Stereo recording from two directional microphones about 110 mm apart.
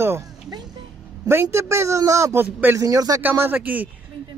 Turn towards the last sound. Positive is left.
turn(degrees=-15)  # may be behind; listen again after turning